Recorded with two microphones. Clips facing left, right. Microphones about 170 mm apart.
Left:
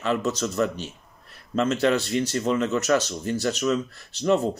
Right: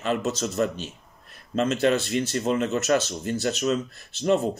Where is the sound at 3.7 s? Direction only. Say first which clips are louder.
Left 1 dB; 20° right (ahead or behind).